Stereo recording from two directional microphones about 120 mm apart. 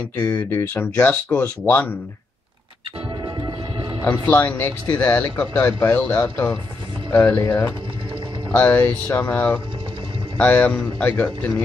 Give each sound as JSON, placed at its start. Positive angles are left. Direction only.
{"t": 0.5, "sound": "speech", "side_deg": 20}
{"t": 3.3, "sound": "music", "side_deg": -45}
{"t": 4.0, "sound": "speech", "side_deg": 20}